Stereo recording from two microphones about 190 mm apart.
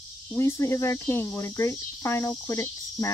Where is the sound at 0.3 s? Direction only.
15° left (ahead or behind).